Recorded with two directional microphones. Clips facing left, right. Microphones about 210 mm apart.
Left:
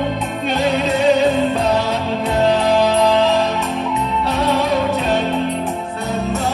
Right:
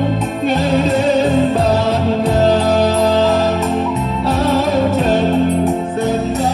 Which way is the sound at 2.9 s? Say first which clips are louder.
Right 1 dB; centre (ahead or behind).